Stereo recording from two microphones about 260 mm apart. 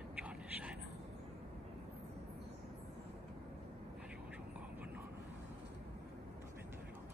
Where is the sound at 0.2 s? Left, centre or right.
Centre.